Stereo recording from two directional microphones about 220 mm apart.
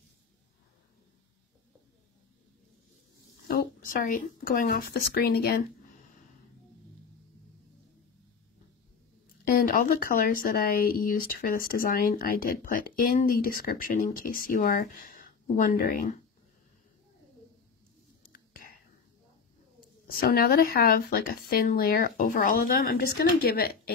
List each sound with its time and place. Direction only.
3.4 s speech: 40° left (ahead or behind)
9.5 s speech: 40° left (ahead or behind)
20.1 s speech: 40° left (ahead or behind)